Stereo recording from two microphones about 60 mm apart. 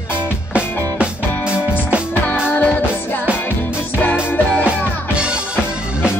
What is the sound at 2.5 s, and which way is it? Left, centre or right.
Music, left.